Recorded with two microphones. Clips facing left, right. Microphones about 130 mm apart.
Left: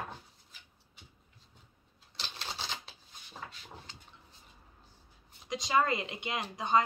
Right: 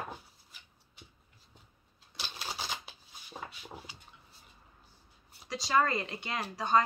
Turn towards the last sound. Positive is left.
turn(degrees=20)  # may be behind; listen again after turning